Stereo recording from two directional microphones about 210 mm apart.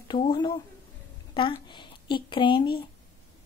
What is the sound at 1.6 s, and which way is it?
Speech, 20° left (ahead or behind).